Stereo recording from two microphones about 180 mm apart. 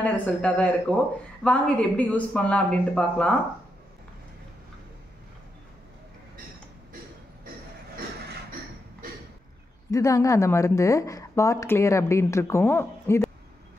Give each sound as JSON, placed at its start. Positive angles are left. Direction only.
{"t": 0.0, "sound": "speech", "side_deg": 5}
{"t": 9.8, "sound": "speech", "side_deg": 20}